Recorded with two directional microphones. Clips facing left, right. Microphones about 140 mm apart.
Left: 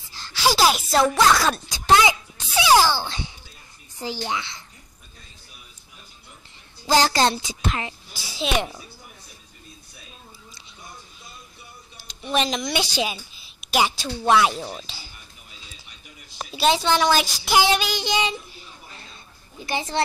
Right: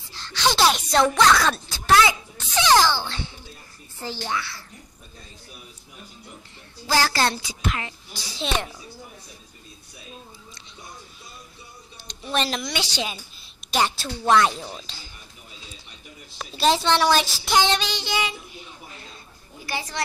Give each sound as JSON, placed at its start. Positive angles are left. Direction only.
{"t": 0.0, "sound": "gasp", "side_deg": 5}
{"t": 1.7, "sound": "a sound", "side_deg": 20}
{"t": 4.0, "sound": "a woman's voice", "side_deg": 15}
{"t": 6.9, "sound": "a woman's voice", "side_deg": 20}
{"t": 8.1, "sound": "child singing", "side_deg": 5}
{"t": 12.1, "sound": "speech", "side_deg": 5}
{"t": 12.7, "sound": "child singing", "side_deg": 10}
{"t": 13.7, "sound": "a woman's voice", "side_deg": 5}
{"t": 16.5, "sound": "a woman's voice", "side_deg": 0}
{"t": 17.1, "sound": "child singing", "side_deg": 5}
{"t": 19.6, "sound": "a child's voice", "side_deg": 20}